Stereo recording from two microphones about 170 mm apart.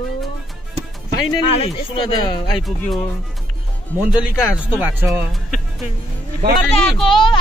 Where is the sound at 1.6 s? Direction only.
30° left (ahead or behind).